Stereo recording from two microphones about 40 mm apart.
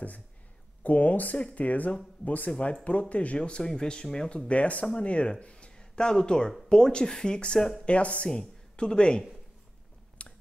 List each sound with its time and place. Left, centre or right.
0.8 s speech: left; by 4.3 s centre
4.5 s speech: left
7.8 s speech: left
10.2 s a sound: left